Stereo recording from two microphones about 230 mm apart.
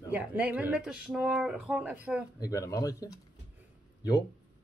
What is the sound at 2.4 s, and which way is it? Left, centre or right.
Speech, centre.